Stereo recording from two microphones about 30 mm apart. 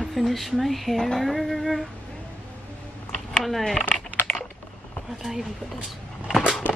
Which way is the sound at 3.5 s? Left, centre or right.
Centre.